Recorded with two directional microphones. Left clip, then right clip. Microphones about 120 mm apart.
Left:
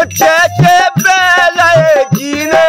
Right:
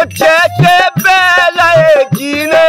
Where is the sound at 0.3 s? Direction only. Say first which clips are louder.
Right 1 dB; 40° right (ahead or behind).